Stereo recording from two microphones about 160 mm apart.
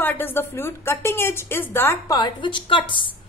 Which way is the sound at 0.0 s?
15° left (ahead or behind).